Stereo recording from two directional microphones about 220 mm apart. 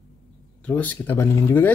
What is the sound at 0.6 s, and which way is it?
Speech, 5° left (ahead or behind).